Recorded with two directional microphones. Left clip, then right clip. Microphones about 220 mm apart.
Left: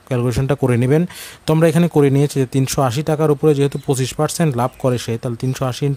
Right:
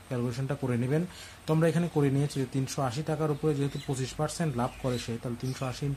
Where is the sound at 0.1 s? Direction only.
45° left (ahead or behind).